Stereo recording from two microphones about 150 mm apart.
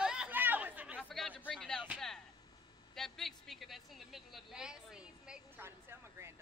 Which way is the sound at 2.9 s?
Centre (ahead or behind).